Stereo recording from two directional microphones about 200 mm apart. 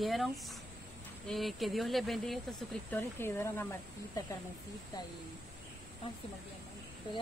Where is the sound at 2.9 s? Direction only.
10° left (ahead or behind).